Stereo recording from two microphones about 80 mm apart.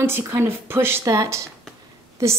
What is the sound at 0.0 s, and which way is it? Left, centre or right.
A woman's voice, right.